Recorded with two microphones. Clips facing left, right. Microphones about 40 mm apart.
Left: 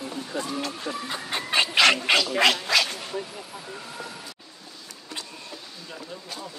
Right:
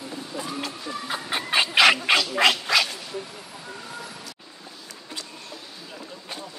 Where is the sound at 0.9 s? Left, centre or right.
Centre.